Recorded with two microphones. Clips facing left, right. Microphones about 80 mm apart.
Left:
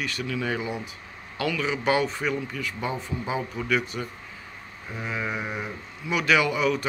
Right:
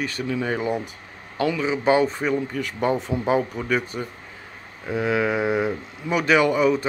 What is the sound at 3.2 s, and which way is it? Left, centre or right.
Speech, right.